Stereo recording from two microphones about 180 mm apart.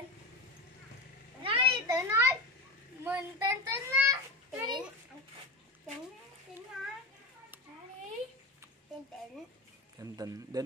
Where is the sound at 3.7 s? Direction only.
15° right (ahead or behind).